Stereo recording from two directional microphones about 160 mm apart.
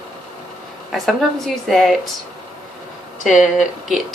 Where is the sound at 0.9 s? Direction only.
Centre (ahead or behind).